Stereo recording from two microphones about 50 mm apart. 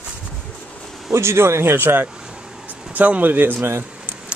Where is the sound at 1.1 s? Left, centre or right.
Right.